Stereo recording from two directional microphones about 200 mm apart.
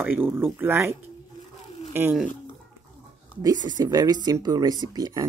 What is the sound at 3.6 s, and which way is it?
Speech, 20° right (ahead or behind).